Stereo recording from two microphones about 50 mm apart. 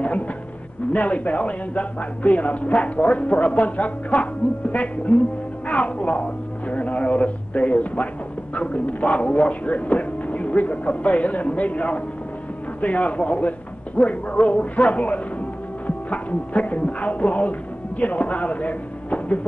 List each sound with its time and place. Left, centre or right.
0.9 s speech: left